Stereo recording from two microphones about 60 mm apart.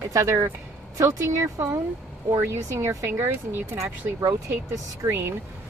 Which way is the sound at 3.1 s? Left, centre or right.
Right.